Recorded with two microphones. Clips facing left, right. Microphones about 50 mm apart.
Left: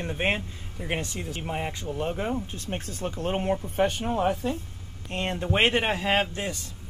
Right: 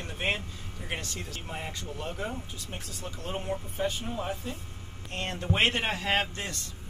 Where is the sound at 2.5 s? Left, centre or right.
Left.